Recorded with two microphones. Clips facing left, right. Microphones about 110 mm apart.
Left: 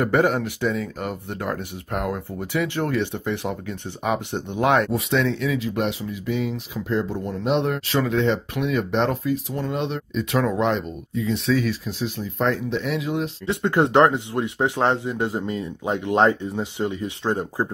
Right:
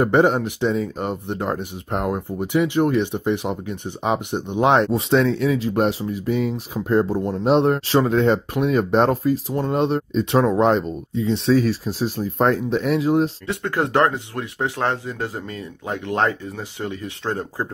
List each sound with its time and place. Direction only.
0.0 s speech: 25° right (ahead or behind); by 7.2 s 45° right (ahead or behind)
7.2 s speech: 35° right (ahead or behind)
13.5 s speech: 25° left (ahead or behind)